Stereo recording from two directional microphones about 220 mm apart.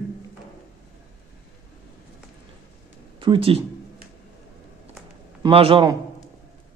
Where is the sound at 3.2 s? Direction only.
25° right (ahead or behind).